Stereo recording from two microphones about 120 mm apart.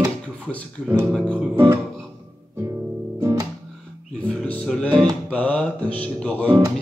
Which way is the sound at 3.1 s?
25° right (ahead or behind).